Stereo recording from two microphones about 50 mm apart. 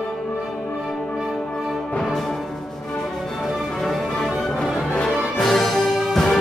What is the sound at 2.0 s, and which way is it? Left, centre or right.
Music, centre.